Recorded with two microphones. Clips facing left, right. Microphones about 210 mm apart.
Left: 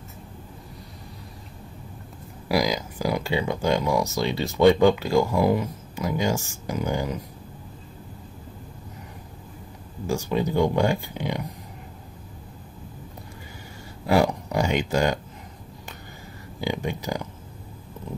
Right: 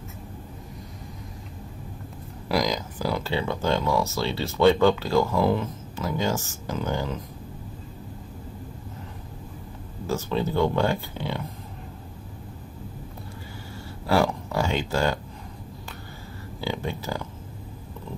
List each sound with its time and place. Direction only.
2.4 s speech: 10° left (ahead or behind)
10.0 s speech: 15° left (ahead or behind)
14.0 s a sound: 15° left (ahead or behind)
16.6 s speech: 15° left (ahead or behind)